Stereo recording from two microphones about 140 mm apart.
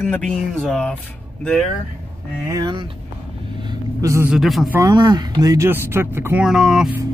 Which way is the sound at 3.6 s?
25° right (ahead or behind).